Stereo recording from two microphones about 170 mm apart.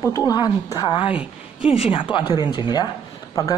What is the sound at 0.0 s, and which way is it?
Speech, 20° left (ahead or behind).